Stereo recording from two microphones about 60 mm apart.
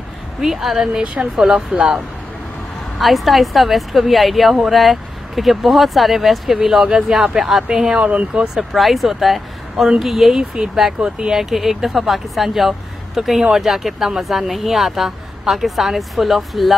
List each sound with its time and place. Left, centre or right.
0.4 s speech: centre
1.0 s speech: right
1.3 s speech: centre
3.0 s speech: centre
8.5 s speech: centre